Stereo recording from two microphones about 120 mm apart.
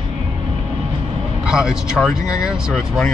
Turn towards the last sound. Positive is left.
turn(degrees=0)  # may be behind; listen again after turning